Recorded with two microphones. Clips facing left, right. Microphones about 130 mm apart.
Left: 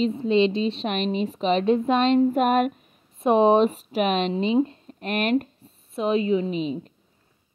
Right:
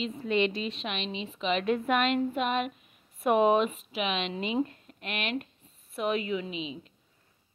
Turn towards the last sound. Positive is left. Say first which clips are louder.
# left 10 dB
turn(degrees=45)  # may be behind; listen again after turning